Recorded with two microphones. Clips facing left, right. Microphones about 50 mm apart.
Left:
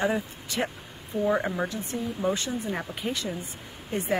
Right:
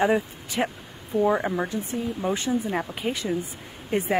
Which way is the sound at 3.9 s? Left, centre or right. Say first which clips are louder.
Right 3 dB; right.